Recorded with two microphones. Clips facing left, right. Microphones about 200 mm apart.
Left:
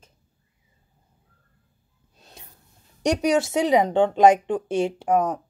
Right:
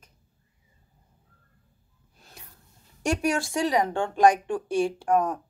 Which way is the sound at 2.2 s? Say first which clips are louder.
Left 2 dB; 20° left (ahead or behind).